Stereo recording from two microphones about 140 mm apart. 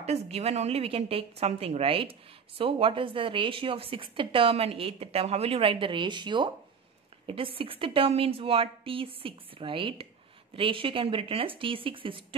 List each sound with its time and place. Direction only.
0.0 s a woman's voice: 50° right (ahead or behind)